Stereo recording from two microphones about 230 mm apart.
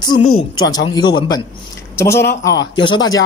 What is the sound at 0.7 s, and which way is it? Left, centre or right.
A man's voice, centre.